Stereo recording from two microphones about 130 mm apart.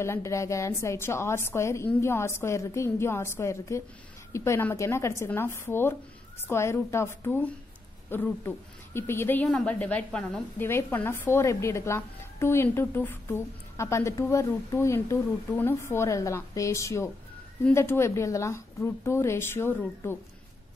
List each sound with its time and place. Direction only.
0.0 s a woman's voice: 20° left (ahead or behind)